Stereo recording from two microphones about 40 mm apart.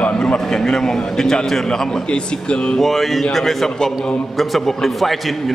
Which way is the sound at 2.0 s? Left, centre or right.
Left.